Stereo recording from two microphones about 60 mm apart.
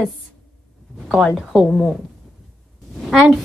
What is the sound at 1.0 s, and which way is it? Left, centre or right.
Speech, centre.